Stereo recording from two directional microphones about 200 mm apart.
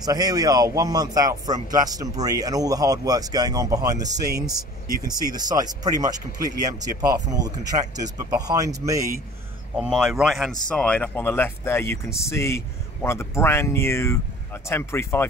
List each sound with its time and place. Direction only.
0.0 s a man's voice: 20° right (ahead or behind)
4.2 s speech: 55° right (ahead or behind)
5.0 s a man's voice: 20° right (ahead or behind)
9.8 s a man's voice: centre (ahead or behind)